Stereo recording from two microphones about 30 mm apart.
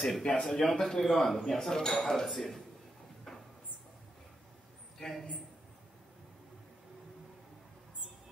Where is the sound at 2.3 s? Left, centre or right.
Centre.